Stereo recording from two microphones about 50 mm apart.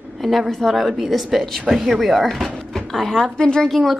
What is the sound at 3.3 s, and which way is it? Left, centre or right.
Speech, centre.